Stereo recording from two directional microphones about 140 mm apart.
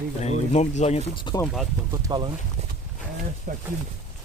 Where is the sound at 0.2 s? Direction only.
50° left (ahead or behind).